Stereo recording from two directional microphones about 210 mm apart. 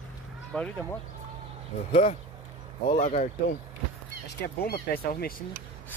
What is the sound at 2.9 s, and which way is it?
Speech, 35° left (ahead or behind).